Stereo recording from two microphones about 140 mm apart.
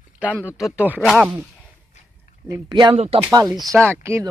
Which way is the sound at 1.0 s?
Centre (ahead or behind).